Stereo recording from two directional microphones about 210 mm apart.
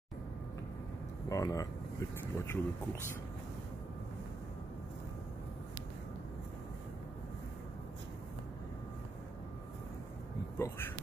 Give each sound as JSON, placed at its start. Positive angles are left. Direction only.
{"t": 1.3, "sound": "speech", "side_deg": 15}
{"t": 10.6, "sound": "speech", "side_deg": 10}